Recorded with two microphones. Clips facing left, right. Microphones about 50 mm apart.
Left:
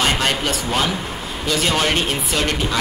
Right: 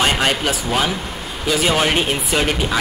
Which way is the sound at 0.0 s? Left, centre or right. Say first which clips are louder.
Right 2 dB; centre.